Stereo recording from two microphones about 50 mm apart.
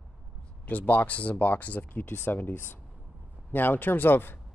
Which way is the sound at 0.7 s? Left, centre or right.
Left.